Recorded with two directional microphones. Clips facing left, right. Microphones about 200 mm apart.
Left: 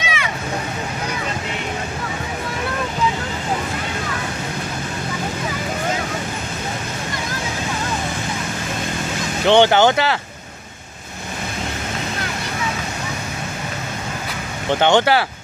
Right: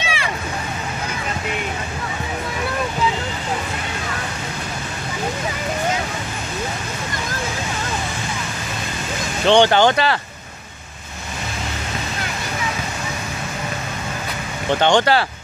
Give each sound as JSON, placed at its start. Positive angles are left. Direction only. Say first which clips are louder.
{"t": 0.0, "sound": "vehicle", "louder": "even", "side_deg": -30}
{"t": 9.5, "sound": "speech", "louder": "left 1 dB", "side_deg": 10}
{"t": 14.7, "sound": "speech", "louder": "left 1 dB", "side_deg": 15}